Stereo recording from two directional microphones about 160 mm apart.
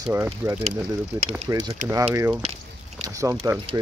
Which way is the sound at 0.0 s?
20° right (ahead or behind).